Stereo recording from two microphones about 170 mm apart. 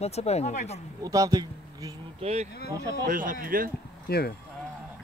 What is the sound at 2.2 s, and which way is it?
Speech, 40° right (ahead or behind).